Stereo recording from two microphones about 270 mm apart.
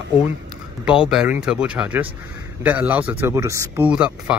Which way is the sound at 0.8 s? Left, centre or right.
Centre.